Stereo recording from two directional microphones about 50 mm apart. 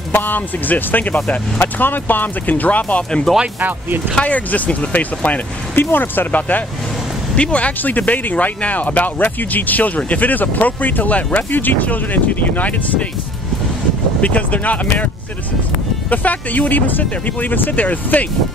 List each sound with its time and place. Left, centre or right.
0.1 s speech: left
1.1 s speech: left
1.6 s speech: left
3.3 s speech: centre
4.2 s speech: left
5.8 s speech: left
7.3 s speech: left
14.2 s speech: left
16.1 s speech: left